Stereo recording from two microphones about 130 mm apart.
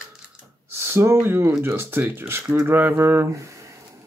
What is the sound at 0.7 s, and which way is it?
Speech, 20° right (ahead or behind).